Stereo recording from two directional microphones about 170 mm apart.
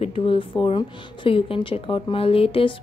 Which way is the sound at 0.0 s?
35° left (ahead or behind).